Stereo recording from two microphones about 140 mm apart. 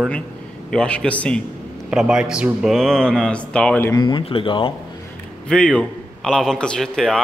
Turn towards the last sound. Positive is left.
turn(degrees=0)  # may be behind; listen again after turning